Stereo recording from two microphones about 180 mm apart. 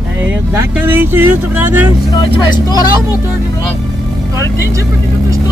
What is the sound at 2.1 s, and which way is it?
Speech, 25° left (ahead or behind).